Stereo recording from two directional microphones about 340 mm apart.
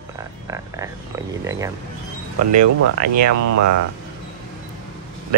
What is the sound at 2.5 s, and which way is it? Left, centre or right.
Speech, right.